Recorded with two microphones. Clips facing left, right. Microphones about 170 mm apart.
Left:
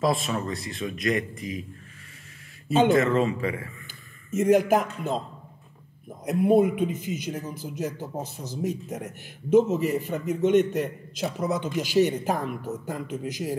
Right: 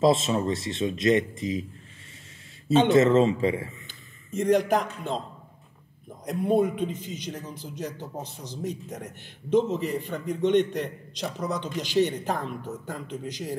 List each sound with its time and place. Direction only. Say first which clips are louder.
0.0 s speech: right 4 dB; 25° right (ahead or behind)
2.9 s speech: right 3 dB; 25° right (ahead or behind)
3.8 s a man's voice: left 1 dB; 5° left (ahead or behind)
6.2 s a man's voice: left 3 dB; 10° left (ahead or behind)